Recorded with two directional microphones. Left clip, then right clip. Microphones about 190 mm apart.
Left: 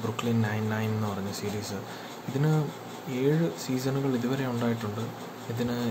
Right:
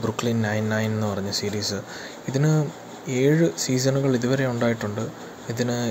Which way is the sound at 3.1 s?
25° right (ahead or behind).